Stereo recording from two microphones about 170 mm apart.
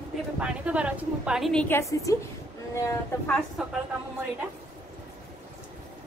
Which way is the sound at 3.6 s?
Centre (ahead or behind).